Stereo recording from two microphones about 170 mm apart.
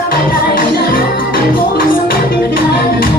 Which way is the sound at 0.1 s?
55° left (ahead or behind).